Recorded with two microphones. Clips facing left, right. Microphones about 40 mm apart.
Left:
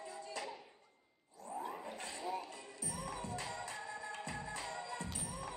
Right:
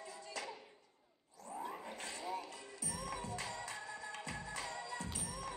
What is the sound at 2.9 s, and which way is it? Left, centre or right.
Music, left.